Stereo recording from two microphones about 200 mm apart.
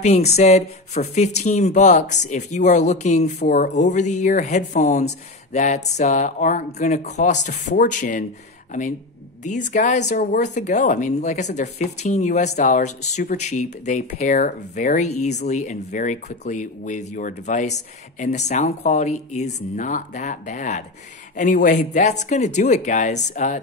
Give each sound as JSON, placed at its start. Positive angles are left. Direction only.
{"t": 0.0, "sound": "speech", "side_deg": 35}
{"t": 9.4, "sound": "speech", "side_deg": 40}